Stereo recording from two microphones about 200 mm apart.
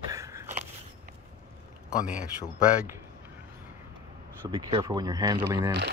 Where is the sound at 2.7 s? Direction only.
10° right (ahead or behind).